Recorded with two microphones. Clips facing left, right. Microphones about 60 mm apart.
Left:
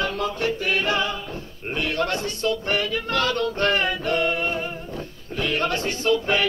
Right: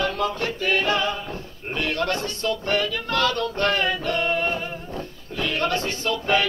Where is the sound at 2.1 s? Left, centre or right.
Right.